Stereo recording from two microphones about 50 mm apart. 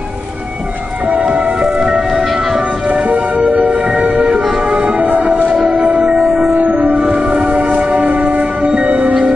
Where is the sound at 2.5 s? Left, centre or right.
Right.